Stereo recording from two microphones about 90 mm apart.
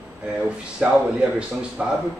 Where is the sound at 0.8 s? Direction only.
15° right (ahead or behind).